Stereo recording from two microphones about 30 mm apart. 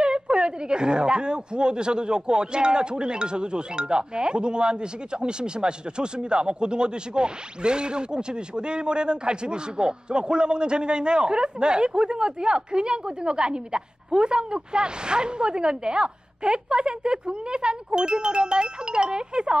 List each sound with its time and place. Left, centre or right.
0.0 s a woman's voice: right